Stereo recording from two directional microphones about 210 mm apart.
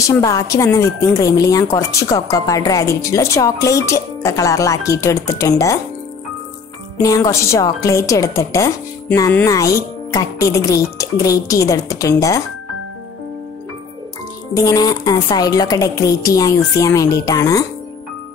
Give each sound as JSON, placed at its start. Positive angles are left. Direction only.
{"t": 0.0, "sound": "speech", "side_deg": 15}
{"t": 7.0, "sound": "speech", "side_deg": 15}
{"t": 14.5, "sound": "speech", "side_deg": 15}